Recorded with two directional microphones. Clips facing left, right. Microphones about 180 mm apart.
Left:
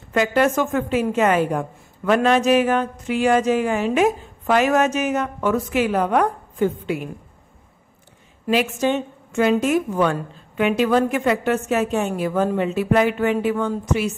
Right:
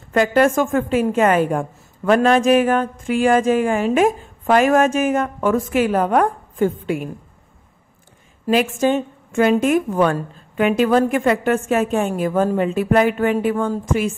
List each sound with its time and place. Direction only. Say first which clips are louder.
0.1 s a woman's voice: right 3 dB; 45° right (ahead or behind)
8.5 s a woman's voice: right 3 dB; 45° right (ahead or behind)